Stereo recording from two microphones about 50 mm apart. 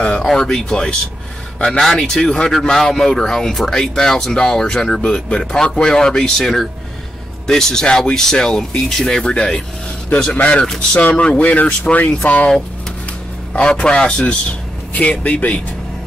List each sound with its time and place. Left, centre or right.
0.0 s speech: centre
10.6 s speech: centre
11.0 s speech: left
13.5 s speech: left